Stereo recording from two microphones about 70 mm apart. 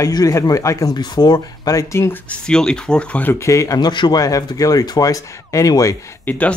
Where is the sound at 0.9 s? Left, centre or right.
Left.